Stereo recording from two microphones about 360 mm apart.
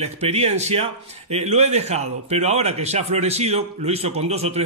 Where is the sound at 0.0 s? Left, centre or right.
Centre.